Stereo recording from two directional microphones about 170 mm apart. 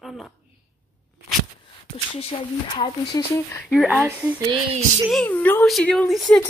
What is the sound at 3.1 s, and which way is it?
Speech, 20° left (ahead or behind).